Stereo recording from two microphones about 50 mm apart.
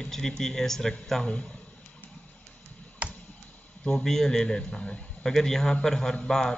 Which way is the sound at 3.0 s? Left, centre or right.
Right.